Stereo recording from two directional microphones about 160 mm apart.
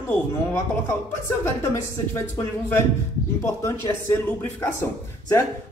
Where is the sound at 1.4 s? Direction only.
15° left (ahead or behind).